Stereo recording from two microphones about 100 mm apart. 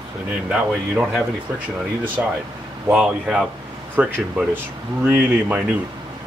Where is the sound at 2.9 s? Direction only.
5° right (ahead or behind).